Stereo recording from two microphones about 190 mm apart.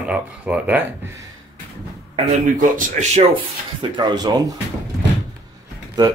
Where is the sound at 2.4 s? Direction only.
40° right (ahead or behind).